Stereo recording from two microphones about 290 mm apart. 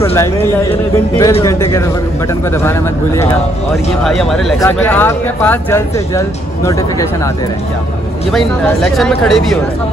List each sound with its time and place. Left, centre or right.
1.1 s speech: centre
8.9 s speech: centre